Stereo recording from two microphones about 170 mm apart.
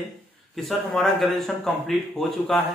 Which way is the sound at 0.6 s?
Centre (ahead or behind).